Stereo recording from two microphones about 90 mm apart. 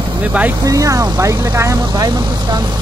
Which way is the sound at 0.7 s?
35° right (ahead or behind).